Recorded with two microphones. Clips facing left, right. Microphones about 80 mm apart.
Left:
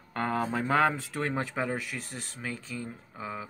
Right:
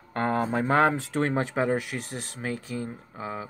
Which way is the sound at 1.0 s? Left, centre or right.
Right.